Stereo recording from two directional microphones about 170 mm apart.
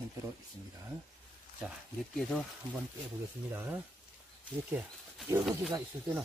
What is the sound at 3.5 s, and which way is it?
Speech, 10° right (ahead or behind).